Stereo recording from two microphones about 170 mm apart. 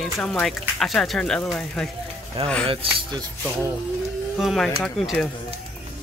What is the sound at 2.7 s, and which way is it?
Speech, 30° right (ahead or behind).